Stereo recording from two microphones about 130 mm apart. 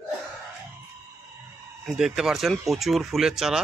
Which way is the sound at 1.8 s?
5° right (ahead or behind).